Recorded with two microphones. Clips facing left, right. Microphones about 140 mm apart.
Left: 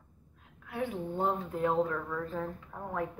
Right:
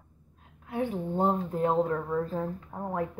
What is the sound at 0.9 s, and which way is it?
Speech, 40° right (ahead or behind).